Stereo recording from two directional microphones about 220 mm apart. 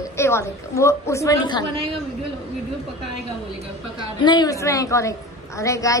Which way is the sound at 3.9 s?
20° left (ahead or behind).